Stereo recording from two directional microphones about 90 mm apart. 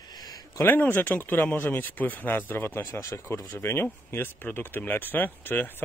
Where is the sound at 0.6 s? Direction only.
20° left (ahead or behind).